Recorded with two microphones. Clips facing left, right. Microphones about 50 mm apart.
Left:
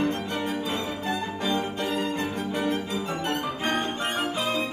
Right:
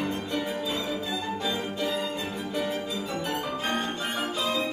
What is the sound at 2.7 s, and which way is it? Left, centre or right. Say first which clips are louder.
Music: left 2 dB; left.